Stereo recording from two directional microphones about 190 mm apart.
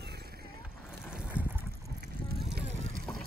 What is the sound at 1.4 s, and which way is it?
Boat, 5° right (ahead or behind).